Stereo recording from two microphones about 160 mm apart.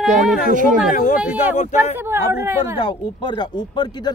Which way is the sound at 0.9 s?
55° left (ahead or behind).